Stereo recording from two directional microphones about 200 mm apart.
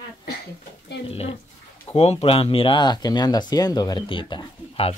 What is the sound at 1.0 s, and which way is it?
Speech, 30° left (ahead or behind).